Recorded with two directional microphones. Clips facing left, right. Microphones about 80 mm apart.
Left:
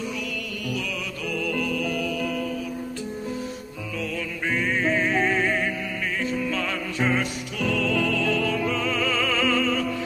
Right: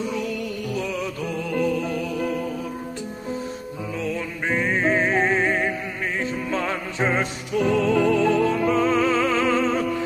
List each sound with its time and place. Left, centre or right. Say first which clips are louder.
0.7 s music: right 4 dB; right
4.0 s music: right 2 dB; right